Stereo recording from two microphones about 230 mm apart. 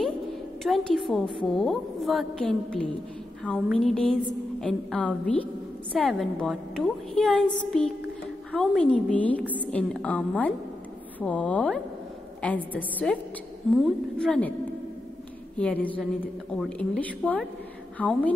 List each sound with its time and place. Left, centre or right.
0.7 s a woman's voice: centre
15.5 s a woman's voice: centre